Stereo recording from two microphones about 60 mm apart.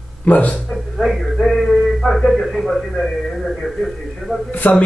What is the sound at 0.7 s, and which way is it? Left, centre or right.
A man's voice, centre.